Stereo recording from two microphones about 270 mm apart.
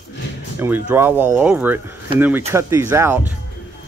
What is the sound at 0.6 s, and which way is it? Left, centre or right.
Speech, centre.